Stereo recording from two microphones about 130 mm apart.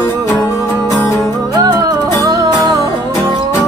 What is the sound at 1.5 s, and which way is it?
Music, 30° right (ahead or behind).